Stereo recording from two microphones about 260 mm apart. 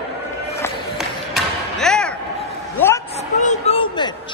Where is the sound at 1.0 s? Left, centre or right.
Centre.